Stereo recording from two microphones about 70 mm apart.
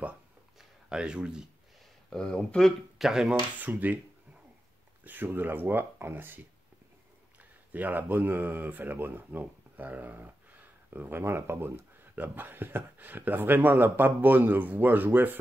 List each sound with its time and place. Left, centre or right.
0.6 s a sound: centre
2.0 s speech: centre
3.0 s speech: centre
3.5 s speech: right
5.0 s speech: right
7.7 s speech: right